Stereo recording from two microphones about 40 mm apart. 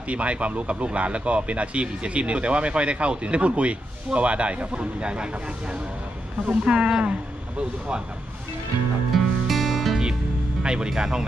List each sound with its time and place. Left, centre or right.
0.1 s speech: right
9.1 s music: centre
10.6 s speech: right